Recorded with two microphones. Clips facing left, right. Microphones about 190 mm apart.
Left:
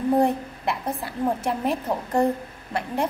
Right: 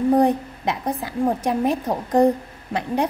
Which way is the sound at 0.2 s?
15° right (ahead or behind).